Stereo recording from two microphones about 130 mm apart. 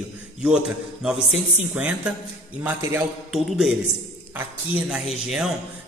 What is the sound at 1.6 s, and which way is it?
A man's voice, 15° right (ahead or behind).